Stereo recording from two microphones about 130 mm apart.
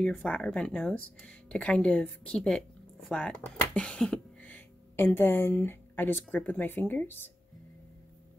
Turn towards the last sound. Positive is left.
turn(degrees=15)  # may be behind; listen again after turning